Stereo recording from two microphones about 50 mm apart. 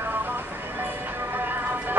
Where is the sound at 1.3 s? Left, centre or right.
Right.